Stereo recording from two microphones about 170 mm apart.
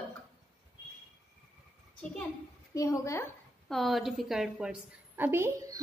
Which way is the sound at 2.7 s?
20° left (ahead or behind).